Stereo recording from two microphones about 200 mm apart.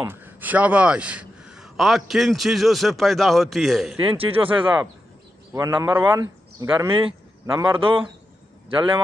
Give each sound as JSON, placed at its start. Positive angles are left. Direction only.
{"t": 0.0, "sound": "a man's voice", "side_deg": -10}
{"t": 4.2, "sound": "speech", "side_deg": -25}
{"t": 5.5, "sound": "a man's voice", "side_deg": -15}